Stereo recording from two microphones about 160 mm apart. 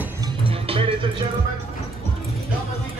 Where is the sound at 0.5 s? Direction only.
35° right (ahead or behind).